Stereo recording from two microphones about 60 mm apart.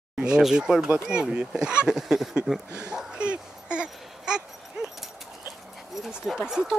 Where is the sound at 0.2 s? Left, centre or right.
Centre.